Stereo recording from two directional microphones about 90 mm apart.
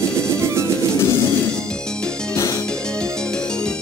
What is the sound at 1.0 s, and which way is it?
Music, 30° left (ahead or behind).